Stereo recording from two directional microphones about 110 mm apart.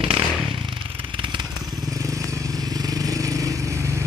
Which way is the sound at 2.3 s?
35° right (ahead or behind).